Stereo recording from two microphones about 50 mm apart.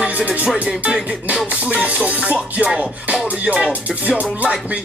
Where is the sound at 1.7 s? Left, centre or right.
Right.